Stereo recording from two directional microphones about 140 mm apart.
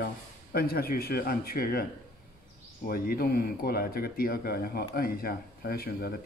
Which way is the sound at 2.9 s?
90° left.